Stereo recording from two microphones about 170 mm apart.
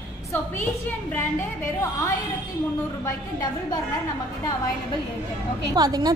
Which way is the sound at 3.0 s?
20° left (ahead or behind).